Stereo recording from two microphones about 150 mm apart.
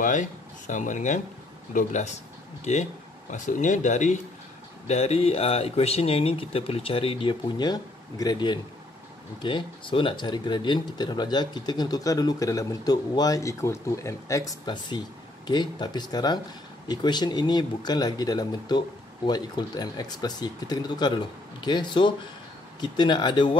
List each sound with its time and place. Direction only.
0.0 s speech: 55° left (ahead or behind); by 23.6 s 30° left (ahead or behind)